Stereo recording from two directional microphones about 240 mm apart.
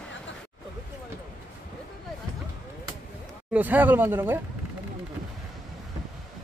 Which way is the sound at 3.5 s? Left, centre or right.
Centre.